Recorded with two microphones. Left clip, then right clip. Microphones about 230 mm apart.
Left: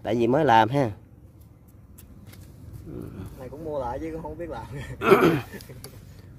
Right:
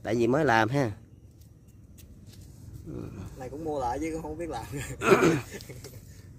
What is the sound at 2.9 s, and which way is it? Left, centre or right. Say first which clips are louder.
Speech: left 1 dB; centre.